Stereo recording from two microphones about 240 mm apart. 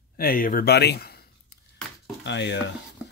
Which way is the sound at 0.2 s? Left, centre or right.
Left.